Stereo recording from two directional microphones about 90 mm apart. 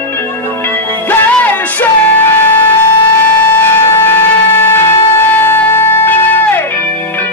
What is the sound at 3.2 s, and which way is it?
Music, 25° left (ahead or behind).